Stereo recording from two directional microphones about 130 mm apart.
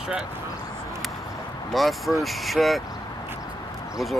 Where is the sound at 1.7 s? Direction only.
Centre (ahead or behind).